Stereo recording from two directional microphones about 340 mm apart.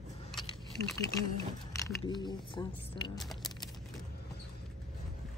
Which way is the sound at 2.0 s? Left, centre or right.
Centre.